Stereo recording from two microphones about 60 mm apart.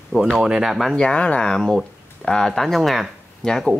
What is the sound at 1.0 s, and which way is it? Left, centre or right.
Speech, centre.